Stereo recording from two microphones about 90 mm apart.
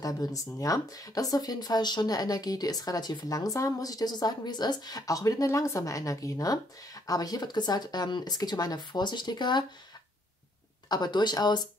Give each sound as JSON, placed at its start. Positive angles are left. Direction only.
{"t": 0.0, "sound": "speech", "side_deg": 45}
{"t": 10.9, "sound": "speech", "side_deg": 55}